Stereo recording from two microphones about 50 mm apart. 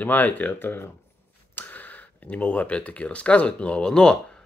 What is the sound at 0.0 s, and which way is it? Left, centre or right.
Speech, left.